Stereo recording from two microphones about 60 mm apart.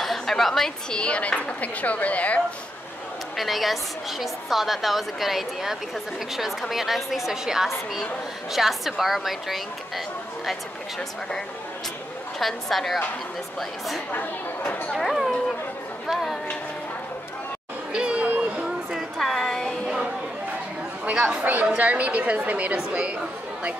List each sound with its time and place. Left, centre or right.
0.0 s a woman's voice: centre
0.9 s speech: centre
3.3 s a woman's voice: centre
12.4 s a woman's voice: centre
14.1 s speech: left
15.0 s a woman's voice: centre
17.9 s a sound: centre
18.9 s a sound: centre
21.0 s chatter: centre
21.7 s a woman's voice: right